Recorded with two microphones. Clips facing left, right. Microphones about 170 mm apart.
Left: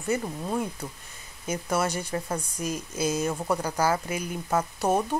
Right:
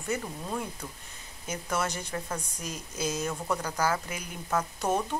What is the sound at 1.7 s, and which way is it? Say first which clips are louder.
A woman's voice: left 4 dB; 10° left (ahead or behind).